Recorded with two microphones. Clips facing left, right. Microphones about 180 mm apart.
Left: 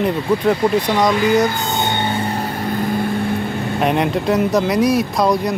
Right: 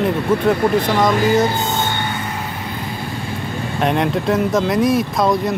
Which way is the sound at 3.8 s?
Centre (ahead or behind).